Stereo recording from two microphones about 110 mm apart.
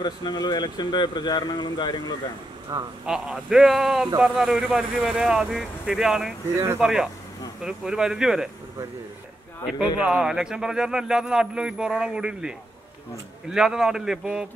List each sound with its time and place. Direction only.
0.0 s speech: 40° left (ahead or behind)
2.7 s speech: 30° right (ahead or behind)
3.1 s speech: 5° right (ahead or behind)
9.8 s speech: 10° right (ahead or behind)